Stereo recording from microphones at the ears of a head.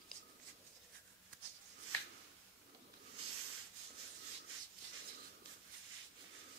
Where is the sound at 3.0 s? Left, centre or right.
Right.